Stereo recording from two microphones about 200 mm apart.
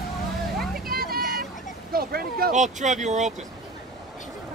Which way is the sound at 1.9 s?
50° right (ahead or behind).